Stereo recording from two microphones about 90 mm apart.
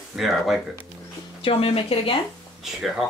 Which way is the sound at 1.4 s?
85° left.